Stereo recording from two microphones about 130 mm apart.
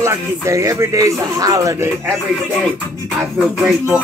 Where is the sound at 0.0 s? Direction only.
25° right (ahead or behind).